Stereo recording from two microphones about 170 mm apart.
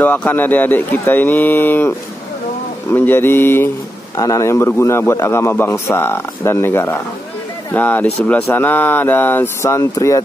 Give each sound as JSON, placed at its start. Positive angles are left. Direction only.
{"t": 0.0, "sound": "a man's voice", "side_deg": 10}